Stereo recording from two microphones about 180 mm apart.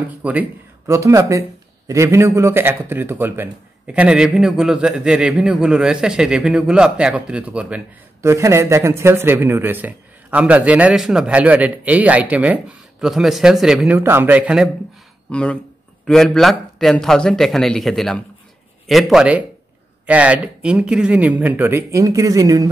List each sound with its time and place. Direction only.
0.2 s speech: 10° right (ahead or behind)
15.3 s a man's voice: 5° left (ahead or behind); by 22.7 s 20° right (ahead or behind)